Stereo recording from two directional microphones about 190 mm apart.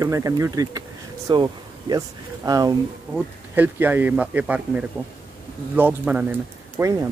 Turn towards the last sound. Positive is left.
turn(degrees=-10)  # may be behind; listen again after turning